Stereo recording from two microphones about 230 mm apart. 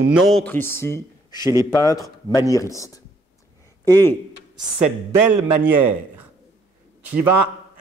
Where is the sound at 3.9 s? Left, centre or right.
Centre.